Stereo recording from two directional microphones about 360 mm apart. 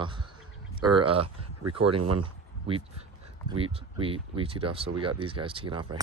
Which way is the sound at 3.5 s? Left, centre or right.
Centre.